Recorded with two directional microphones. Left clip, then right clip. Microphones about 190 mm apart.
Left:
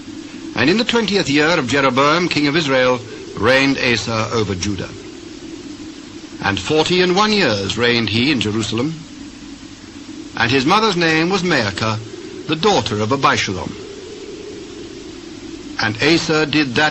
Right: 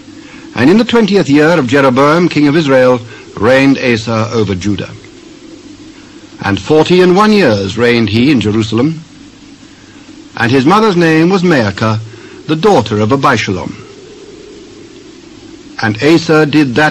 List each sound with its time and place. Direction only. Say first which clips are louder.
0.5 s a man's voice: right 7 dB; 30° right (ahead or behind)
6.4 s a man's voice: right 7 dB; 30° right (ahead or behind)
10.3 s a man's voice: right 6 dB; 30° right (ahead or behind)
15.7 s a man's voice: right 6 dB; 30° right (ahead or behind)